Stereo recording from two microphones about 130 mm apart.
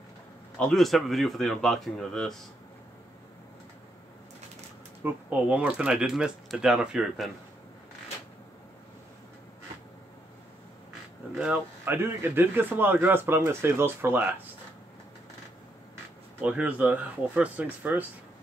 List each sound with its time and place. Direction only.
0.6 s speech: centre (ahead or behind)
5.0 s speech: 10° right (ahead or behind)
11.3 s a man's voice: 10° right (ahead or behind)
16.3 s a man's voice: 10° right (ahead or behind)